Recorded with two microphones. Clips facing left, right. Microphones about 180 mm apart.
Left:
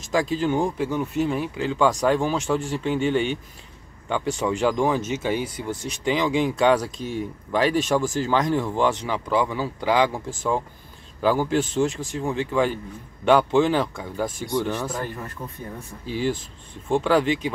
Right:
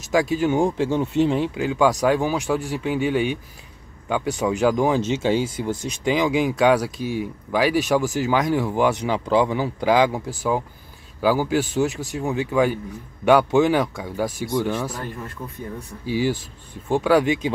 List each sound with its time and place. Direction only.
0.1 s speech: 10° right (ahead or behind)
1.6 s speech: 10° right (ahead or behind)
4.1 s speech: 15° right (ahead or behind)
11.1 s speech: 5° right (ahead or behind)
16.1 s speech: 10° right (ahead or behind)